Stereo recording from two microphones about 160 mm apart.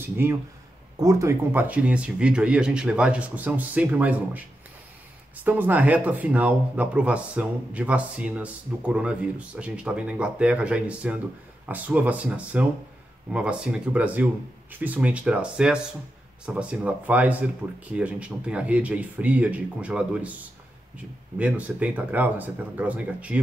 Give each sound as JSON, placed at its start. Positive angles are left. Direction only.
{"t": 0.0, "sound": "speech", "side_deg": -15}
{"t": 5.4, "sound": "speech", "side_deg": -10}
{"t": 21.4, "sound": "speech", "side_deg": -10}